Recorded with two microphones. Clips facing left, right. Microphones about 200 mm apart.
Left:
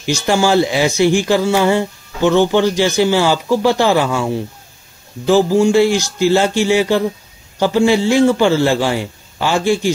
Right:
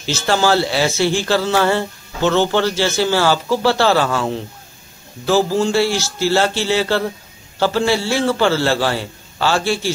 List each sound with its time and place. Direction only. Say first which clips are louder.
0.0 s speech: left 2 dB; 15° left (ahead or behind)